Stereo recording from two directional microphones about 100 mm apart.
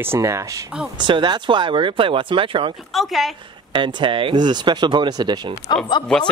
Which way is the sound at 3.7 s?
55° right (ahead or behind).